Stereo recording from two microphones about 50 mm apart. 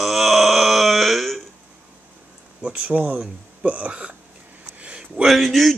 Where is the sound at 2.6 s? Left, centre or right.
Right.